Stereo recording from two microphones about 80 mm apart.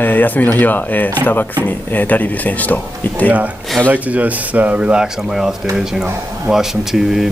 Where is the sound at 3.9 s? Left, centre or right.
Centre.